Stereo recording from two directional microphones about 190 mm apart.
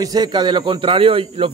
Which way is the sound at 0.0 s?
20° right (ahead or behind).